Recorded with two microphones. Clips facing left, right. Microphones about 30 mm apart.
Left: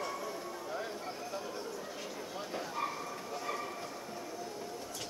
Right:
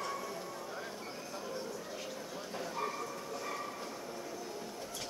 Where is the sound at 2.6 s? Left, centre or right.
Centre.